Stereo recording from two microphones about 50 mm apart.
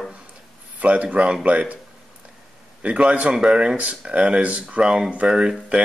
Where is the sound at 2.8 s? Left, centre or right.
Right.